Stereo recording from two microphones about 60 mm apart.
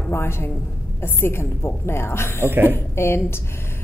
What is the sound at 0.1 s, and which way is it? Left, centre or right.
A woman's voice, left.